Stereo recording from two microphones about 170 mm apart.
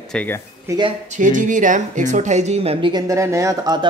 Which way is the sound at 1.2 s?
50° right (ahead or behind).